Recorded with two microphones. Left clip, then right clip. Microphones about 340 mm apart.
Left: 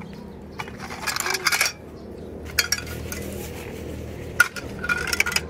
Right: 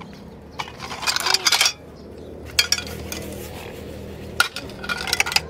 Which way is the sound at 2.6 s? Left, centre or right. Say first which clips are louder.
Right 3 dB; centre.